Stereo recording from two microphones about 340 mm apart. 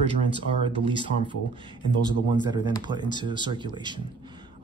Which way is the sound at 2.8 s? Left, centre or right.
Centre.